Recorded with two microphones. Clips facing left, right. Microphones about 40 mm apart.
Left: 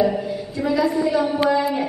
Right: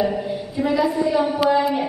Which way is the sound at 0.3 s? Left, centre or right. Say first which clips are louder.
Right 1 dB; right.